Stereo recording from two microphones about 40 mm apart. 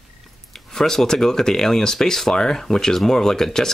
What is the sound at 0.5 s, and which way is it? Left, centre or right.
Speech, centre.